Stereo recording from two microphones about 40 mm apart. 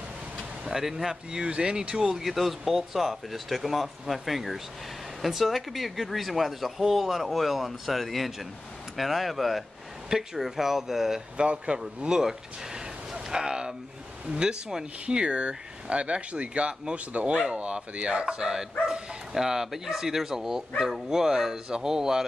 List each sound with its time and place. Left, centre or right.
0.7 s speech: centre
1.4 s speech: right
2.2 s speech: centre
11.3 s speech: right